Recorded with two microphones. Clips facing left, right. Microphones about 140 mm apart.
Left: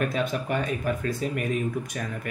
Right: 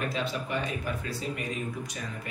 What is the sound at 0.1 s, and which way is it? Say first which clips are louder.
Speech: left 5 dB; 50° left (ahead or behind).